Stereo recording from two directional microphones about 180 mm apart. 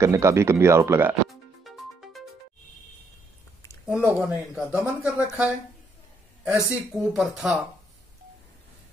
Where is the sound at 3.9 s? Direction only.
10° right (ahead or behind).